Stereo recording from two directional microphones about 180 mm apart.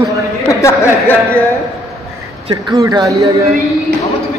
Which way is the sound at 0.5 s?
15° left (ahead or behind).